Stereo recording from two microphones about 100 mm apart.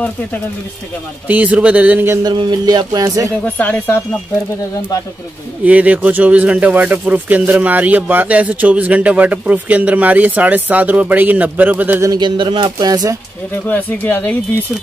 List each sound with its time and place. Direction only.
1.2 s speech: 15° right (ahead or behind)
2.2 s music: 45° right (ahead or behind)
3.5 s speech: 15° left (ahead or behind)
5.7 s speech: 15° right (ahead or behind)
12.2 s music: 50° right (ahead or behind)
13.7 s speech: 15° left (ahead or behind)